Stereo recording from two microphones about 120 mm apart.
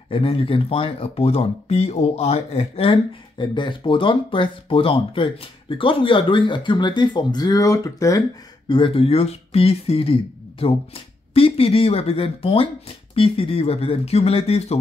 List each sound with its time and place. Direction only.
0.1 s speech: 50° left (ahead or behind); by 8.2 s 25° left (ahead or behind)
8.6 s speech: 45° left (ahead or behind)
11.3 s speech: 50° left (ahead or behind)